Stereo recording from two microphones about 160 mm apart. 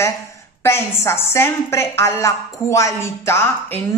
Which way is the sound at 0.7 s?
15° left (ahead or behind).